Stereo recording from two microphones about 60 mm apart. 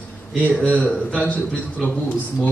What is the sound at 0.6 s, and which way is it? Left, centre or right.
A man's voice, left.